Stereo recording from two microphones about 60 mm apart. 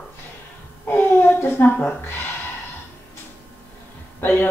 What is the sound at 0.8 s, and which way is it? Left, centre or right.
Speech, left.